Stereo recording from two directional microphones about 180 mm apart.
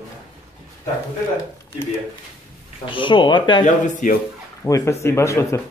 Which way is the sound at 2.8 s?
30° left (ahead or behind).